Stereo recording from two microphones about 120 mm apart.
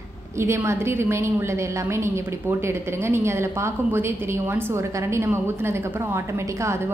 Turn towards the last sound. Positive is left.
turn(degrees=-20)  # may be behind; listen again after turning